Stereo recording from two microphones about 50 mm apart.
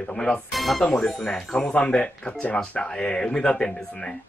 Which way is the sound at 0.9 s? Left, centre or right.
Centre.